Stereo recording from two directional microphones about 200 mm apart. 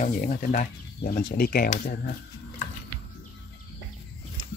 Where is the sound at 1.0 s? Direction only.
55° left (ahead or behind).